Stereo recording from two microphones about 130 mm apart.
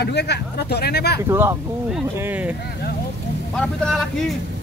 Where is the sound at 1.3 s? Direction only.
20° right (ahead or behind).